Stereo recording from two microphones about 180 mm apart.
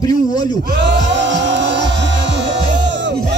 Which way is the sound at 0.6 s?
65° right (ahead or behind).